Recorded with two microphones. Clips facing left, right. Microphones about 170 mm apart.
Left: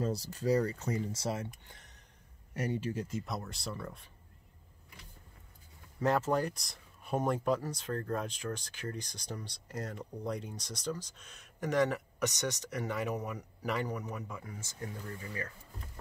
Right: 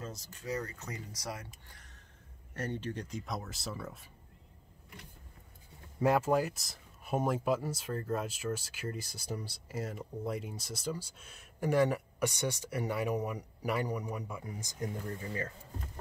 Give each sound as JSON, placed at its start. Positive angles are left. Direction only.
{"t": 0.0, "sound": "speech", "side_deg": 35}
{"t": 2.5, "sound": "speech", "side_deg": 10}
{"t": 5.9, "sound": "speech", "side_deg": -10}
{"t": 15.0, "sound": "speech", "side_deg": -30}